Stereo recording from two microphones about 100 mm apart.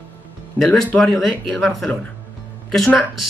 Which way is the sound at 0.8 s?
15° left (ahead or behind).